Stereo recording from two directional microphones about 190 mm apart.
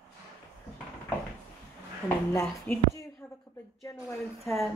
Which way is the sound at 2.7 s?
5° left (ahead or behind).